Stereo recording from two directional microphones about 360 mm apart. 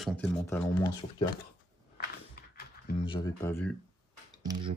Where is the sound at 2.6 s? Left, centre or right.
Left.